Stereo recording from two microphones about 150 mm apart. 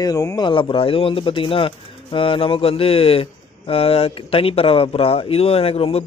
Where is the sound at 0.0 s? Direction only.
25° left (ahead or behind).